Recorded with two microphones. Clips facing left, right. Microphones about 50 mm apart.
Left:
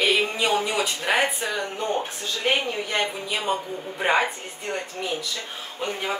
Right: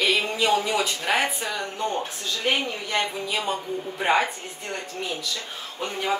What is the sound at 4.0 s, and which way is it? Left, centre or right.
Speech, centre.